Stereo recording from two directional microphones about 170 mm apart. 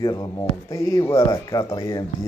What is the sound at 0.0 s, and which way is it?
Speech, 25° left (ahead or behind).